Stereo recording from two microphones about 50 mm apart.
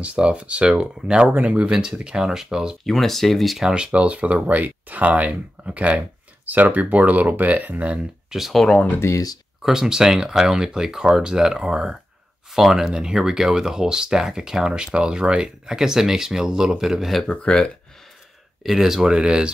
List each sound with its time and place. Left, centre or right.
0.0 s speech: right
1.3 s speech: right
1.6 s speech: centre
2.8 s speech: centre
3.7 s speech: right
6.4 s speech: right
8.3 s speech: centre
8.6 s speech: left
9.6 s speech: centre
17.3 s speech: centre
18.6 s speech: centre